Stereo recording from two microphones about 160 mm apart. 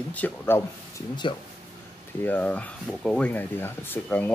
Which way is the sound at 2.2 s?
10° left (ahead or behind).